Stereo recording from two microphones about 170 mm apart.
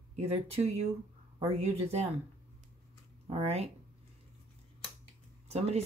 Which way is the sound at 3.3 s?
35° right (ahead or behind).